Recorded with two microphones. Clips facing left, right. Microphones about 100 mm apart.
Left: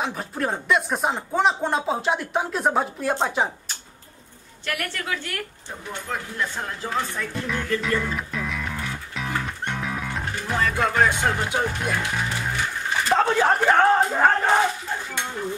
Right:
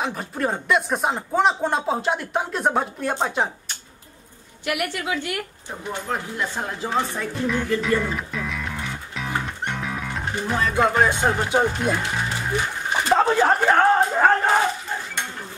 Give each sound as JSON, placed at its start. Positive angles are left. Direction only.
{"t": 0.0, "sound": "speech", "side_deg": 0}
{"t": 4.6, "sound": "a woman's voice", "side_deg": -15}
{"t": 7.4, "sound": "speech", "side_deg": 0}
{"t": 7.8, "sound": "music", "side_deg": -5}
{"t": 10.2, "sound": "music", "side_deg": -20}
{"t": 10.6, "sound": "speech", "side_deg": -20}
{"t": 12.4, "sound": "music", "side_deg": -20}
{"t": 13.4, "sound": "speech", "side_deg": 0}